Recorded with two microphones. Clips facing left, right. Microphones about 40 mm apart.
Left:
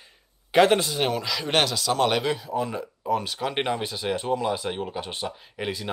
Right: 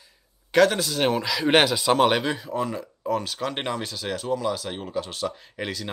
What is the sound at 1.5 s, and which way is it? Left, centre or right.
Speech, centre.